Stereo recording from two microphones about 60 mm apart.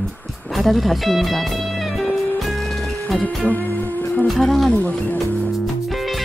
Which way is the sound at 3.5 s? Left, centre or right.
Left.